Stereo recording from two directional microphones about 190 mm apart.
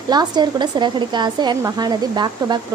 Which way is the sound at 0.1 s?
20° right (ahead or behind).